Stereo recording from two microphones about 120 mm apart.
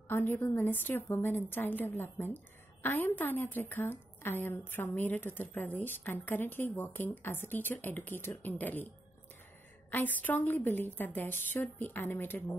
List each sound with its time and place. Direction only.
0.1 s a woman's voice: 15° left (ahead or behind)
9.8 s a woman's voice: 15° left (ahead or behind)